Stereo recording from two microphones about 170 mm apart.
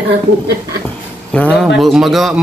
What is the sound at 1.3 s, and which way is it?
Speech, 5° left (ahead or behind).